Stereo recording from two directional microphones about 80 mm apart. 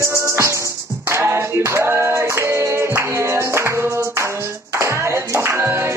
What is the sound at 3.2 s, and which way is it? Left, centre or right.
Music, right.